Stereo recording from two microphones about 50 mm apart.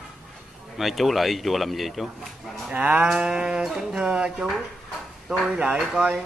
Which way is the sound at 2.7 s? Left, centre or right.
Right.